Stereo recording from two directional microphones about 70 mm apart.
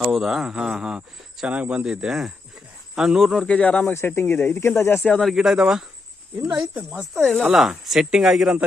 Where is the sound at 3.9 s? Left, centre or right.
Left.